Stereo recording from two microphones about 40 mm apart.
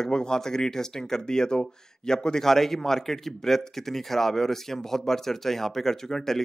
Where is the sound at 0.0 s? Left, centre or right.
Centre.